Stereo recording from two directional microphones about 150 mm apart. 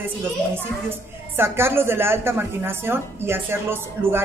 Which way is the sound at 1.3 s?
15° right (ahead or behind).